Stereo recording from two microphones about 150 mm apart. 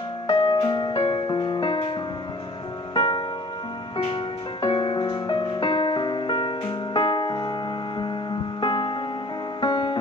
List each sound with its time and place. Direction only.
0.3 s music: 30° left (ahead or behind)